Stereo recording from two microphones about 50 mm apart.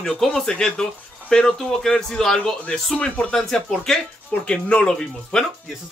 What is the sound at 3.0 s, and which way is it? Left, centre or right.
Speech, left.